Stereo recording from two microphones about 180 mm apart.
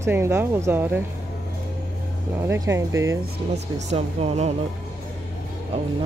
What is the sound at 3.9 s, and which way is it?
Speech, 35° right (ahead or behind).